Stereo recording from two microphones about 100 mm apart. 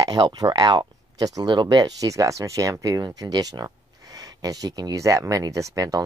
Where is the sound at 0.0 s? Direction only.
45° right (ahead or behind).